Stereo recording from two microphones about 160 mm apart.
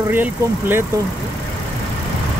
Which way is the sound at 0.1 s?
15° right (ahead or behind).